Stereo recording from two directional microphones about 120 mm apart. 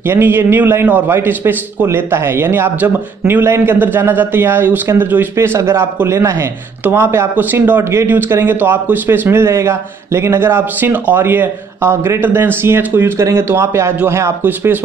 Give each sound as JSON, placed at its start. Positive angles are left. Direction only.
{"t": 0.1, "sound": "speech", "side_deg": -20}